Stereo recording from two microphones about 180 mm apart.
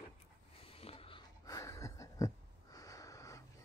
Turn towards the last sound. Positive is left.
turn(degrees=15)  # may be behind; listen again after turning